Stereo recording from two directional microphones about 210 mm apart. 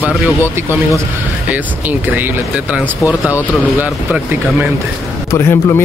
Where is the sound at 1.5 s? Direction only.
10° right (ahead or behind).